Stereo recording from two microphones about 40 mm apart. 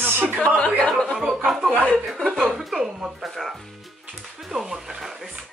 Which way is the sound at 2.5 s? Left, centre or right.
Centre.